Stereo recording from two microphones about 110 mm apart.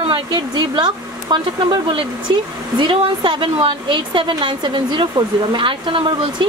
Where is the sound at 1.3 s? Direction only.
45° right (ahead or behind).